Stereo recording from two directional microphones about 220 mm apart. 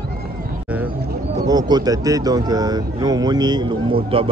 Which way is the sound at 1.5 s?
20° right (ahead or behind).